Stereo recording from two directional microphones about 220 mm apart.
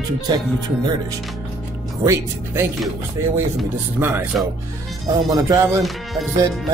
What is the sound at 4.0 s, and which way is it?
Speech, 10° right (ahead or behind).